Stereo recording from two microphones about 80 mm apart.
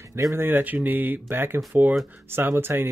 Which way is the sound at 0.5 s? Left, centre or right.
Right.